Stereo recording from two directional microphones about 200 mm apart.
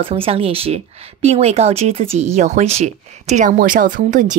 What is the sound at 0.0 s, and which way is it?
A woman's voice, 30° right (ahead or behind).